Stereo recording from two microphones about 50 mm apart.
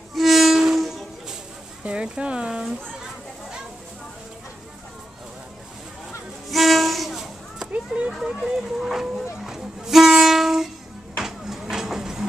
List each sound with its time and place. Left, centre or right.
0.1 s train: centre
0.7 s music: centre
1.8 s speech: right
6.5 s music: centre
7.7 s a sound: right
8.2 s speech: centre
8.7 s train: centre
11.1 s a sound: centre
11.7 s train: centre